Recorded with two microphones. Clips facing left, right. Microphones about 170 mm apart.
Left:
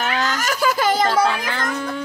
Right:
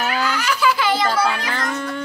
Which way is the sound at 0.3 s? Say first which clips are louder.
Right 1 dB; 45° left (ahead or behind).